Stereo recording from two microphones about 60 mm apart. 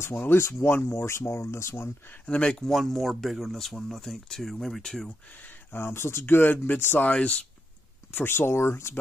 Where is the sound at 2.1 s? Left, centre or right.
Centre.